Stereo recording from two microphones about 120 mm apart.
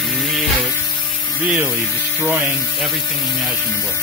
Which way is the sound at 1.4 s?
10° right (ahead or behind).